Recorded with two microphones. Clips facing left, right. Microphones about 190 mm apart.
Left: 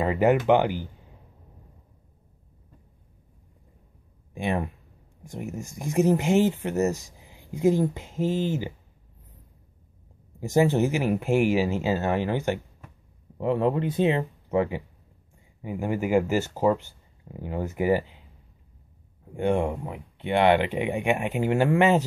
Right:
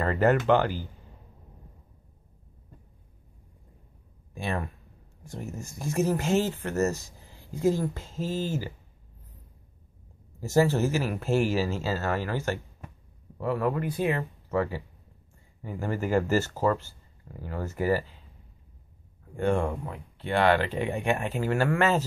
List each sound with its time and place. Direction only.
0.0 s speech: 15° left (ahead or behind)
4.3 s speech: 20° left (ahead or behind)
10.4 s speech: 15° left (ahead or behind)
19.3 s speech: 20° left (ahead or behind)